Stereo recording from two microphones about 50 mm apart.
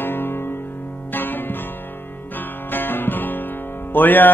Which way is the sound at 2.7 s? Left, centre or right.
Left.